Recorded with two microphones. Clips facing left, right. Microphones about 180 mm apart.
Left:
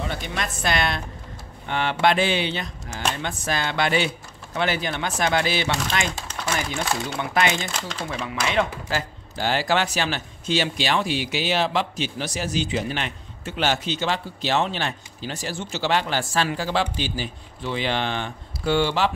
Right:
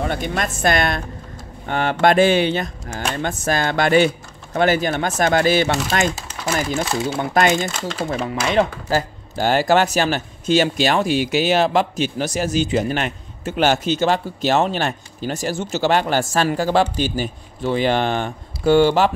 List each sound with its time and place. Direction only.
0.0 s speech: 50° right (ahead or behind)
6.1 s a sound: 5° right (ahead or behind)
6.8 s speech: 5° right (ahead or behind)
7.2 s speech: 40° right (ahead or behind)